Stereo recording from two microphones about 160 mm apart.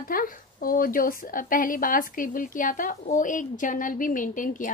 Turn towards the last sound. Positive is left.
turn(degrees=55)  # may be behind; listen again after turning